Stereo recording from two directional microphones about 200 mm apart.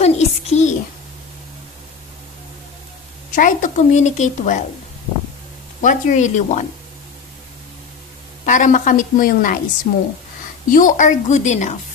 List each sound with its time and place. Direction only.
0.0 s a sound: 35° left (ahead or behind)
3.3 s a woman's voice: 40° left (ahead or behind)
5.8 s a woman's voice: 40° left (ahead or behind)
8.5 s a woman's voice: 40° left (ahead or behind)